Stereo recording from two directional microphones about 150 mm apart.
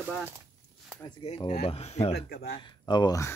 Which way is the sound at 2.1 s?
90° left.